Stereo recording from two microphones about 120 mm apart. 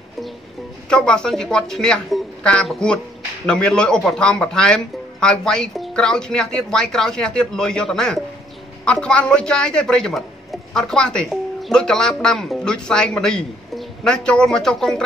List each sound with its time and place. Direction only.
0.8 s speech: 10° left (ahead or behind)